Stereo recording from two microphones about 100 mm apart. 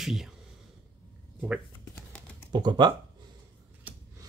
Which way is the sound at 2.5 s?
45° right (ahead or behind).